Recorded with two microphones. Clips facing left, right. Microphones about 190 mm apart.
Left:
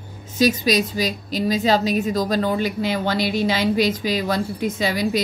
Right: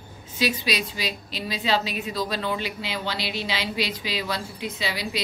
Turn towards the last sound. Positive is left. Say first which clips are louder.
# left 9 dB
turn(degrees=45)  # may be behind; listen again after turning